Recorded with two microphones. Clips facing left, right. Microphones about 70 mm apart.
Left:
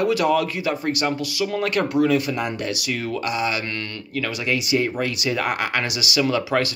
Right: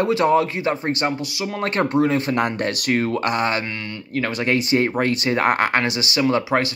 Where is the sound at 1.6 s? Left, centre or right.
Right.